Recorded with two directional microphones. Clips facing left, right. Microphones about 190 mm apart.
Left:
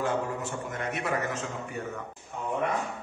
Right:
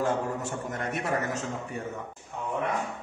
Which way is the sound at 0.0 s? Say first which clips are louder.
Right 1 dB; 45° right (ahead or behind).